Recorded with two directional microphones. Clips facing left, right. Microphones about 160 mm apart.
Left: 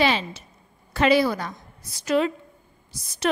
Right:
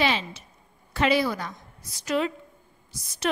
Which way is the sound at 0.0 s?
40° left (ahead or behind).